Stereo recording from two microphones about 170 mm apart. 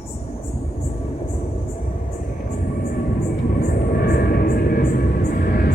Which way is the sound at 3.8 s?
65° left (ahead or behind).